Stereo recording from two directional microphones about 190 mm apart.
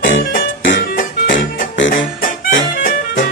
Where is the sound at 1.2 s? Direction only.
75° left (ahead or behind).